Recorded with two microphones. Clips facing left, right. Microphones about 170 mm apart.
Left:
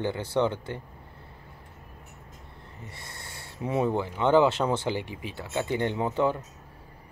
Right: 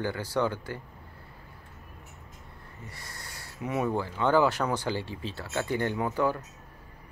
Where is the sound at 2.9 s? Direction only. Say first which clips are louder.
Even; 25° left (ahead or behind).